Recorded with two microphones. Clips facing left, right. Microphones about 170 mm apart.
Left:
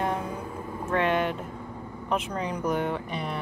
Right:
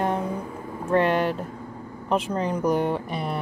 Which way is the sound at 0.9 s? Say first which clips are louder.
Right 4 dB; 35° right (ahead or behind).